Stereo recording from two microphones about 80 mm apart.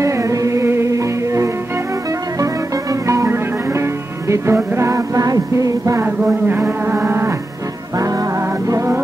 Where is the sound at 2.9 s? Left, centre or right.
Right.